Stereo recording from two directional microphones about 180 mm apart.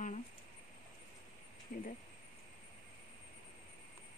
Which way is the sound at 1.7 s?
50° left (ahead or behind).